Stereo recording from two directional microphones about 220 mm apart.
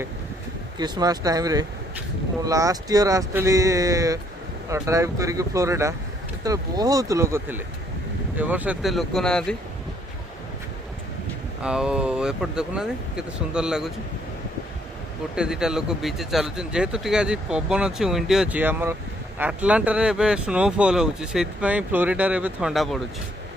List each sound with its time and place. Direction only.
0.7 s speech: 20° right (ahead or behind); by 9.6 s 5° left (ahead or behind)
11.6 s speech: 5° right (ahead or behind)
15.3 s speech: 5° right (ahead or behind)